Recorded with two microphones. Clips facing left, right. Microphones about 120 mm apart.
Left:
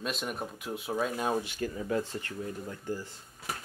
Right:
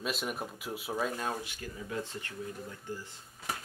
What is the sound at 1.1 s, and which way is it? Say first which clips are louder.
Speech: left 5 dB; 15° left (ahead or behind).